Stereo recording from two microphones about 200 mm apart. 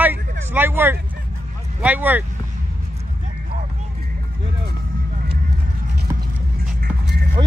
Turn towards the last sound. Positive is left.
turn(degrees=-25)  # may be behind; listen again after turning